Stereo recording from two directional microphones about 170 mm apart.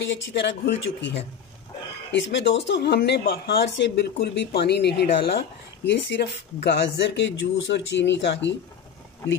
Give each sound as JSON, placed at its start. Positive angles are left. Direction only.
{"t": 0.0, "sound": "speech", "side_deg": 85}
{"t": 4.4, "sound": "speech", "side_deg": 75}